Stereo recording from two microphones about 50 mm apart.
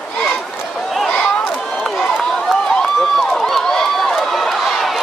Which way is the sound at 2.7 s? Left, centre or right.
Centre.